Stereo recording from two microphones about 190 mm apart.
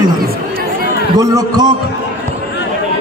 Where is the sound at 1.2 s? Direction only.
20° right (ahead or behind).